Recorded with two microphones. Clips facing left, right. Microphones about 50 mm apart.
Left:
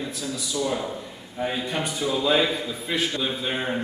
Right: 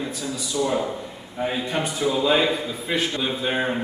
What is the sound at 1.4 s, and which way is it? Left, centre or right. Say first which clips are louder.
A man's voice: right 2 dB; centre.